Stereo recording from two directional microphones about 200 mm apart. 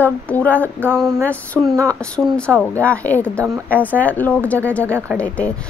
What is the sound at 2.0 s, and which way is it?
A woman's voice, 5° left (ahead or behind).